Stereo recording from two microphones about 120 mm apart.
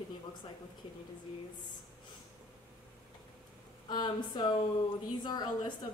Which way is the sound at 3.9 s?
35° left (ahead or behind).